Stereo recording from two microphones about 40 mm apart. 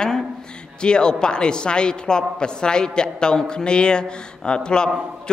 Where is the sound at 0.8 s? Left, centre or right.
Left.